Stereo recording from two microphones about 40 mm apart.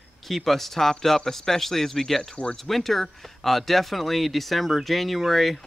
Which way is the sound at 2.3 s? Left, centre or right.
Left.